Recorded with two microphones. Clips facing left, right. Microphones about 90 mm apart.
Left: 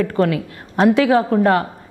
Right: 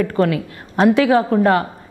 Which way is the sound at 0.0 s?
15° right (ahead or behind).